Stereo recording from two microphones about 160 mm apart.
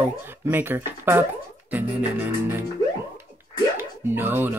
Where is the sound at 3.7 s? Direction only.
15° right (ahead or behind).